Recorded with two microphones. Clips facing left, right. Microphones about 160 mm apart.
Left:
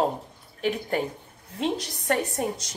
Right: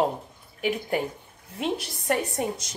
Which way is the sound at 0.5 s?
10° right (ahead or behind).